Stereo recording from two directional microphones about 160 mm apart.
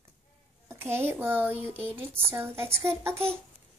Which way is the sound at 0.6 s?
15° right (ahead or behind).